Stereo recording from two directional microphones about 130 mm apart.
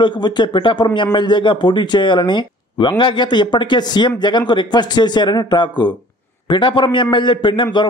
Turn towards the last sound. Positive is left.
turn(degrees=40)  # may be behind; listen again after turning